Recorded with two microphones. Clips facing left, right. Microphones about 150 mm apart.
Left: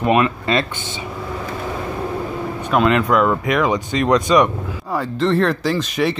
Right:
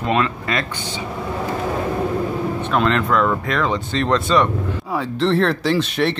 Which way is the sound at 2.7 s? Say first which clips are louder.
Left 3 dB; 5° left (ahead or behind).